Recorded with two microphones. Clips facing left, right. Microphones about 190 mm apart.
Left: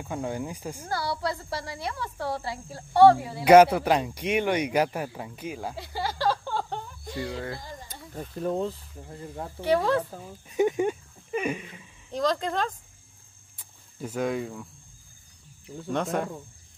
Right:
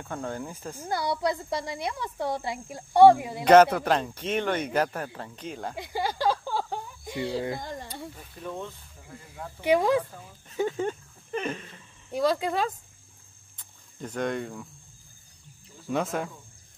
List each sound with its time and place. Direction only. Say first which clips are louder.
0.0 s speech: left 2 dB; 10° left (ahead or behind)
0.8 s speech: right 3 dB; 20° right (ahead or behind)
3.4 s speech: left 1 dB; 10° left (ahead or behind)
5.8 s a sound: right 4 dB; 15° right (ahead or behind)
7.9 s speech: left 3 dB; 40° left (ahead or behind)
9.6 s speech: right 1 dB; 15° right (ahead or behind)
10.5 s speech: left 4 dB; 15° left (ahead or behind)
12.1 s speech: right 1 dB; 10° right (ahead or behind)
13.6 s cricket: left 2 dB; 5° left (ahead or behind)
15.9 s speech: left 1 dB; centre (ahead or behind)